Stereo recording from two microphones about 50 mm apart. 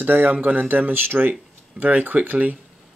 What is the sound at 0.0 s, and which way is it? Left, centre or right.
Speech, right.